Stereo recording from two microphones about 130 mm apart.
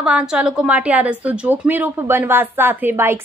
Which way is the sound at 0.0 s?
5° right (ahead or behind).